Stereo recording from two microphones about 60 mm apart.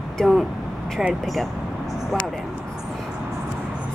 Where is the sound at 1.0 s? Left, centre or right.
Centre.